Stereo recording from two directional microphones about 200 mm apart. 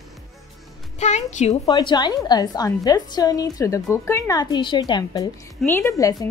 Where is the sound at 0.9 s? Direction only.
35° left (ahead or behind).